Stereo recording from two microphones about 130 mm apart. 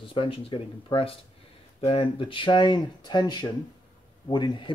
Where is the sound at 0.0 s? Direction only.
45° left (ahead or behind).